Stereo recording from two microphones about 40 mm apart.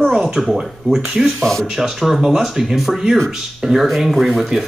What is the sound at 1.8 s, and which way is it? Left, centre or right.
Speech, centre.